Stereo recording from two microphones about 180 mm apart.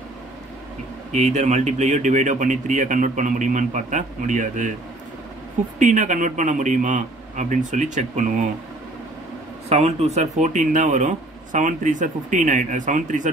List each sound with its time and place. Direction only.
1.1 s speech: 40° right (ahead or behind)
5.8 s speech: 45° right (ahead or behind)
9.7 s speech: 35° right (ahead or behind)